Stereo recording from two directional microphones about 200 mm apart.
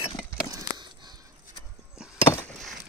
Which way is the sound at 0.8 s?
20° right (ahead or behind).